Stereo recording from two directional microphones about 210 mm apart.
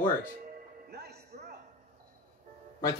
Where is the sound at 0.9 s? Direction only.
50° right (ahead or behind).